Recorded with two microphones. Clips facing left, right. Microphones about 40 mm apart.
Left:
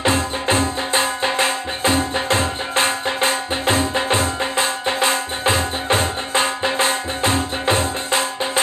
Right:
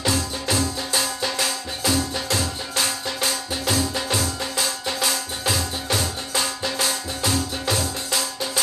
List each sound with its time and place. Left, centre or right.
0.0 s music: left